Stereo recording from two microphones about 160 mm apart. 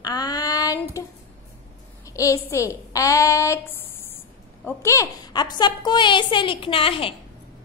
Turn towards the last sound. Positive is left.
turn(degrees=35)  # may be behind; listen again after turning